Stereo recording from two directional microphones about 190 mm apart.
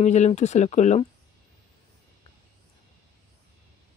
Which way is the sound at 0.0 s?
35° left (ahead or behind).